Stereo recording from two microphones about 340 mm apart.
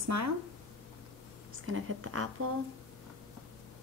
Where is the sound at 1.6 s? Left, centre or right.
Right.